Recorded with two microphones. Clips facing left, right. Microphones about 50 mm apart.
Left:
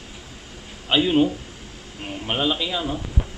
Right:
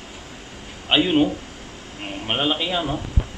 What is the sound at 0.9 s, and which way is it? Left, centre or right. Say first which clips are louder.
Speech: right 1 dB; right.